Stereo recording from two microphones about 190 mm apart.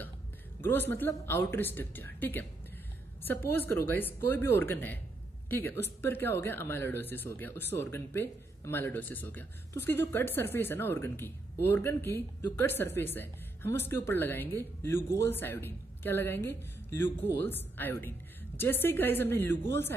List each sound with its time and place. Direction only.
0.6 s speech: 10° left (ahead or behind)